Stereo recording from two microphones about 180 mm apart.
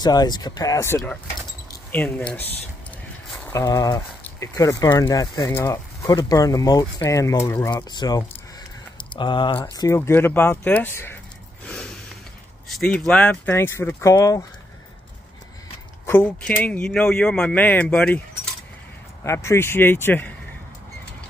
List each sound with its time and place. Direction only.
0.0 s speech: 20° left (ahead or behind)
3.3 s a sound: 5° left (ahead or behind)
3.5 s speech: 20° left (ahead or behind)
9.8 s speech: 15° left (ahead or behind)
11.6 s a sound: 5° left (ahead or behind)
12.6 s speech: 5° left (ahead or behind); by 14.4 s 20° left (ahead or behind)
16.1 s speech: 10° left (ahead or behind)